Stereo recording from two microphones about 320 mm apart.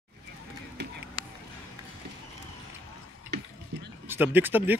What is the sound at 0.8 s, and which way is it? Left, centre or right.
Run, right.